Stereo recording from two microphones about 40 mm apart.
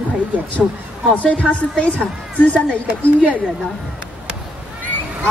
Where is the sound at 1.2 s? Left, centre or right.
Left.